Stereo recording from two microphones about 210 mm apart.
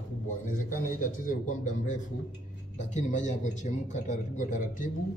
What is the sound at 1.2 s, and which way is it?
A man's voice, 35° left (ahead or behind).